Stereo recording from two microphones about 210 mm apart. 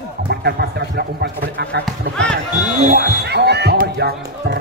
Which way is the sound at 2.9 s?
50° right (ahead or behind).